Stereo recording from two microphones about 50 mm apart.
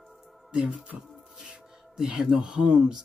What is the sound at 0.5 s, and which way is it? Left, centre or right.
Speech, right.